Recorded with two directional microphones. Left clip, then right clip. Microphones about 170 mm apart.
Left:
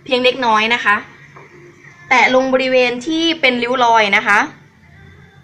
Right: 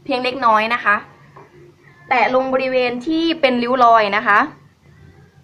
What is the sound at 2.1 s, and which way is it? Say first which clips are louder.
A woman's voice: left 4 dB; 5° right (ahead or behind).